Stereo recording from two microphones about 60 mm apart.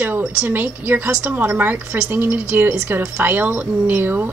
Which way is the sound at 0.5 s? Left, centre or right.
Right.